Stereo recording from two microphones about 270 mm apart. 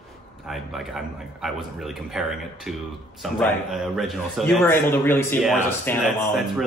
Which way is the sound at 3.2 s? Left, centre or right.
Centre.